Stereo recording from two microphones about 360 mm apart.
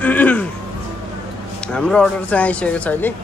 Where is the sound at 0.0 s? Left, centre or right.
Centre.